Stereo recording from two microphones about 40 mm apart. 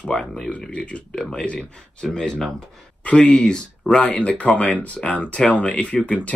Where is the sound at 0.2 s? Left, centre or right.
Centre.